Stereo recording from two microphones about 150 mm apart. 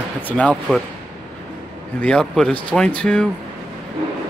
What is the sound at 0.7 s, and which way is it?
Speech, centre (ahead or behind).